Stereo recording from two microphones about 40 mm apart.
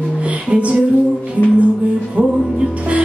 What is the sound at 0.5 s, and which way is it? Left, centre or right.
Music, right.